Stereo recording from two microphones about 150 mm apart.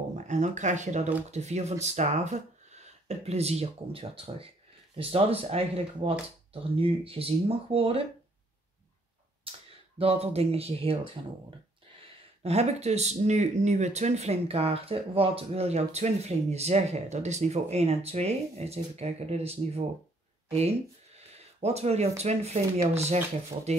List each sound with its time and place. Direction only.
0.1 s speech: 50° right (ahead or behind)
9.9 s speech: 40° right (ahead or behind)
12.4 s speech: 45° right (ahead or behind)